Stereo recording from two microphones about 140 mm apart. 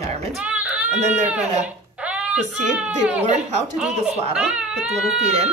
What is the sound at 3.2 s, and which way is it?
Speech, 55° right (ahead or behind).